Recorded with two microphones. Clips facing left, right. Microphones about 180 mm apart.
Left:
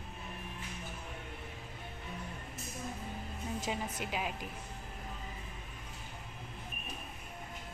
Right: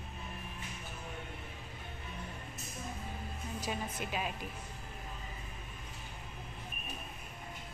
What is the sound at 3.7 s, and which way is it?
Speech, 15° left (ahead or behind).